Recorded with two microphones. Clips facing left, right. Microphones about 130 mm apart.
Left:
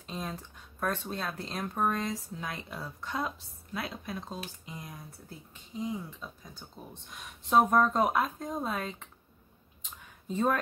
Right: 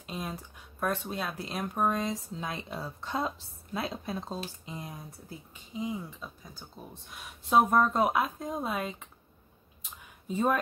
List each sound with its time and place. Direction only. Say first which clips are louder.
0.0 s speech: right 1 dB; 10° right (ahead or behind); by 4.9 s 25° right (ahead or behind)
5.5 s speech: even; 5° right (ahead or behind)
9.8 s a sound: right 1 dB; 10° right (ahead or behind)